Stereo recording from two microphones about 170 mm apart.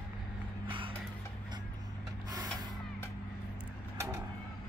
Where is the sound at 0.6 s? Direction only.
30° right (ahead or behind).